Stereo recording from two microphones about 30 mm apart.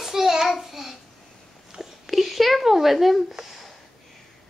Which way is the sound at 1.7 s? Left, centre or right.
Centre.